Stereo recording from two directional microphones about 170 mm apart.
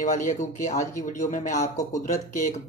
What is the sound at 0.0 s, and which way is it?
Speech, 50° left (ahead or behind).